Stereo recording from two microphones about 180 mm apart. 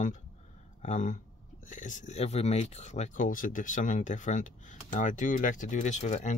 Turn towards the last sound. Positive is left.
turn(degrees=40)  # may be behind; listen again after turning